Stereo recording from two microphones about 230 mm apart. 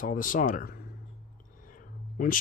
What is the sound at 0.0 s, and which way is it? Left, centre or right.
Speech, left.